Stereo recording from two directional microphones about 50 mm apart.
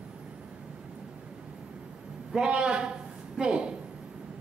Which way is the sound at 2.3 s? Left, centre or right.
Centre.